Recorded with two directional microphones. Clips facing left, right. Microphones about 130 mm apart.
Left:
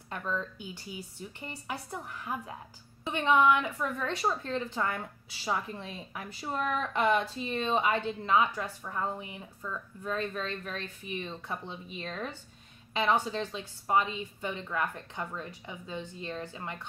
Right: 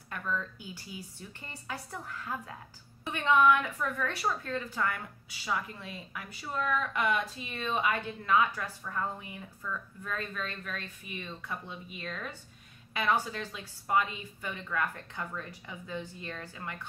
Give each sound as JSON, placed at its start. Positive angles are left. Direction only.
{"t": 0.1, "sound": "a woman's voice", "side_deg": 25}